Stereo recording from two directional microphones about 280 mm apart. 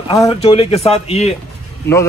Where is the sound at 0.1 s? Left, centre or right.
Centre.